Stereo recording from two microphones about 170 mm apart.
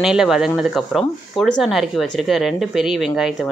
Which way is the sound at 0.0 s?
5° right (ahead or behind).